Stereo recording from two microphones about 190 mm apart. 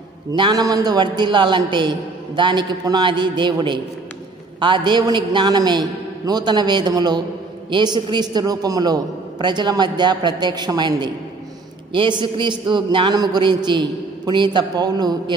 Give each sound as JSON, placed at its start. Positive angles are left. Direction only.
{"t": 0.3, "sound": "a man's voice", "side_deg": -20}